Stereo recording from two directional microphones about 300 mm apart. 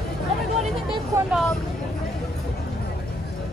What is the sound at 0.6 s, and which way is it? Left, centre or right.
Hubbub, centre.